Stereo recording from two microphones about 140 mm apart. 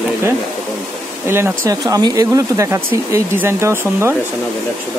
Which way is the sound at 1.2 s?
15° right (ahead or behind).